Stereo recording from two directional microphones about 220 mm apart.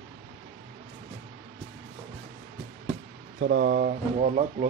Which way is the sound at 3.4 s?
50° right (ahead or behind).